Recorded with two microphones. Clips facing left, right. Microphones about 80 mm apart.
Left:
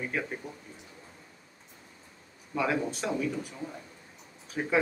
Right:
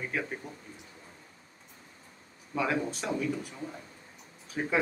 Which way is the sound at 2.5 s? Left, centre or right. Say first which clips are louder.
Left 1 dB; centre.